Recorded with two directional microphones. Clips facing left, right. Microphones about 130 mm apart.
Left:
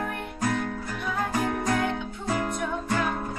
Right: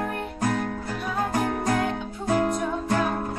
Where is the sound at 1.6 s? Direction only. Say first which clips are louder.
Right 1 dB; 30° right (ahead or behind).